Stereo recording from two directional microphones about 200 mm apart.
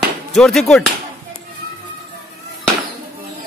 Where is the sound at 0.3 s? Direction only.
Centre (ahead or behind).